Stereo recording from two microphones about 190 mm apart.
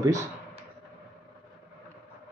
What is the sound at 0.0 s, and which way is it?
Speech, 15° right (ahead or behind).